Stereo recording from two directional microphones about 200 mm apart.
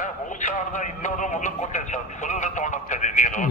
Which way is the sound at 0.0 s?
40° left (ahead or behind).